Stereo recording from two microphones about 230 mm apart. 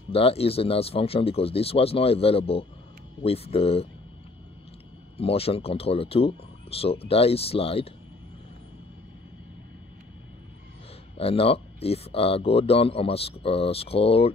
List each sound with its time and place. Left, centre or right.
0.1 s speech: left
5.1 s speech: left
11.1 s speech: left